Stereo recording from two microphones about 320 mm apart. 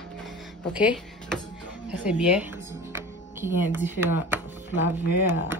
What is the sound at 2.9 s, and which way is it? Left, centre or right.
Music, centre.